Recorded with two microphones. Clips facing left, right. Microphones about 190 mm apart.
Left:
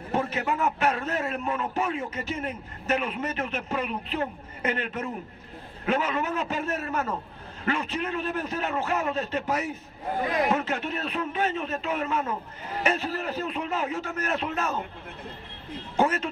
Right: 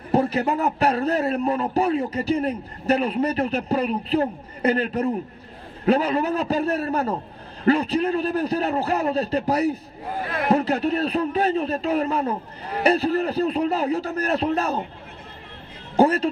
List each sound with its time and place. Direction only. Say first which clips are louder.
0.1 s a man's voice: right 7 dB; 35° right (ahead or behind)
16.0 s a man's voice: right 7 dB; 35° right (ahead or behind)